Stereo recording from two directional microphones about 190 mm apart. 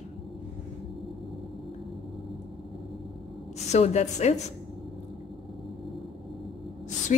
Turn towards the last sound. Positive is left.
turn(degrees=40)  # may be behind; listen again after turning